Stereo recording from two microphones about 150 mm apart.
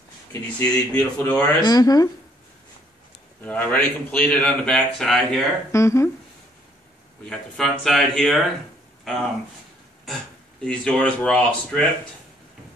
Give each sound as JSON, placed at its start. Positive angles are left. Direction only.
{"t": 0.3, "sound": "speech", "side_deg": 15}
{"t": 1.6, "sound": "speech", "side_deg": 25}
{"t": 3.4, "sound": "a man's voice", "side_deg": 10}
{"t": 5.7, "sound": "speech", "side_deg": 20}
{"t": 7.2, "sound": "a man's voice", "side_deg": 0}
{"t": 10.6, "sound": "a man's voice", "side_deg": 5}